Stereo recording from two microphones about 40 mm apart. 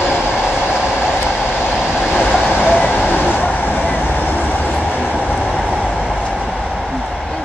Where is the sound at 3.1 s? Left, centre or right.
Left.